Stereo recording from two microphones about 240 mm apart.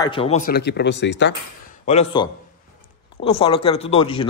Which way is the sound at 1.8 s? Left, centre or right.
Left.